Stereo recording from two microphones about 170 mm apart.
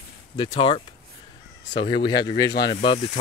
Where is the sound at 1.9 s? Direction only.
25° left (ahead or behind).